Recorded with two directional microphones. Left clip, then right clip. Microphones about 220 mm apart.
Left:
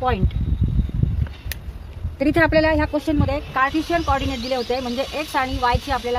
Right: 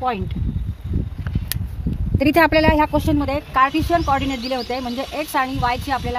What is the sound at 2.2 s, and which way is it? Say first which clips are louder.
Speech: right 2 dB; 45° right (ahead or behind).